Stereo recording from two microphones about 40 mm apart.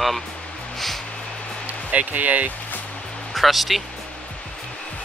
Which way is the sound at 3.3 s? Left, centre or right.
Centre.